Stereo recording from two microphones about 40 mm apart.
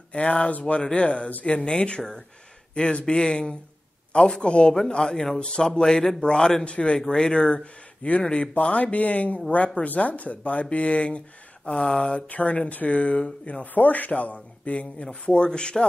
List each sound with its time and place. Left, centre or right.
0.1 s speech: left
0.8 s speech: left
2.7 s speech: left